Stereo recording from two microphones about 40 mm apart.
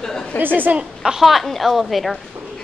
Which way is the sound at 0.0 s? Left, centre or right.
Centre.